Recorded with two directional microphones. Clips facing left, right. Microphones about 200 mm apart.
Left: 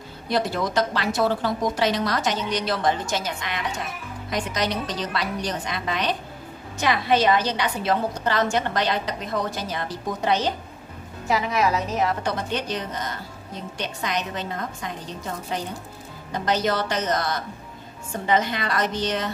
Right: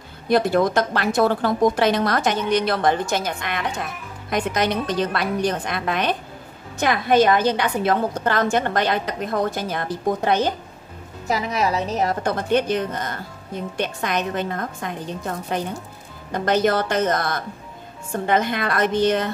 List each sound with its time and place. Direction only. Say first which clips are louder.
0.3 s a woman's voice: right 6 dB; 55° right (ahead or behind)
11.2 s a woman's voice: even; 40° right (ahead or behind)